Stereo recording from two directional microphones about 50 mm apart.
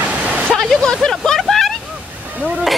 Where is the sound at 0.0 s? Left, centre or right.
Right.